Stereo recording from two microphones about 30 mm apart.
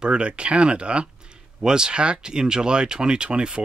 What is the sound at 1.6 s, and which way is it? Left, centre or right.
Speech, right.